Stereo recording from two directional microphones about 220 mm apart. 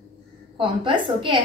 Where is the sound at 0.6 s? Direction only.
20° right (ahead or behind).